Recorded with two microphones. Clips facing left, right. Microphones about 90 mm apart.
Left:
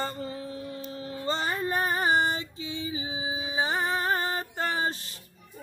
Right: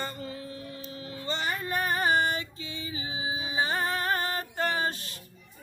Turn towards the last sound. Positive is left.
turn(degrees=30)  # may be behind; listen again after turning